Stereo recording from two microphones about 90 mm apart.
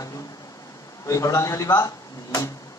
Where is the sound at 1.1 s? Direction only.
35° left (ahead or behind).